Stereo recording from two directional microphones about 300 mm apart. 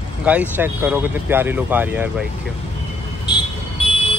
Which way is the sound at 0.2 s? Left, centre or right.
Centre.